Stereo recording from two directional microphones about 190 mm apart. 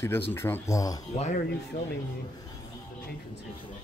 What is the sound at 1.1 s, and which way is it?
Speech, 35° left (ahead or behind).